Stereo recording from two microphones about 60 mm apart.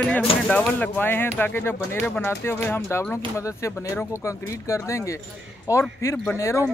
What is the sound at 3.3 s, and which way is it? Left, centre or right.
Speech, left.